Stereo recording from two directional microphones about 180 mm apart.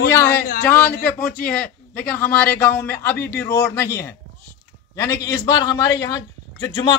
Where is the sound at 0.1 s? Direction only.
15° left (ahead or behind).